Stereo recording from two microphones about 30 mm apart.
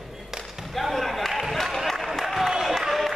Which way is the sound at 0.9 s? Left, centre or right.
Centre.